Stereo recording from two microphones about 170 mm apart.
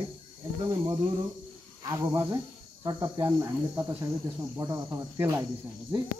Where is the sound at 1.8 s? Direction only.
15° right (ahead or behind).